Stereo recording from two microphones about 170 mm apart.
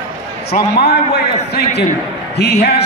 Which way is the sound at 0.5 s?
75° left (ahead or behind).